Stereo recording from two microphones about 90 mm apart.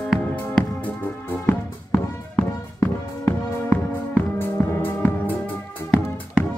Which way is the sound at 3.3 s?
25° left (ahead or behind).